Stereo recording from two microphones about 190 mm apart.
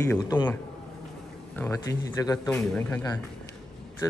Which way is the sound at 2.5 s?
5° left (ahead or behind).